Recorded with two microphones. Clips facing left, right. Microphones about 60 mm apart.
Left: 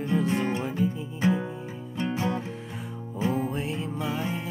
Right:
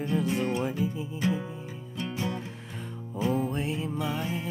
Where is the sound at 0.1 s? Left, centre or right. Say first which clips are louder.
Left 3 dB; centre.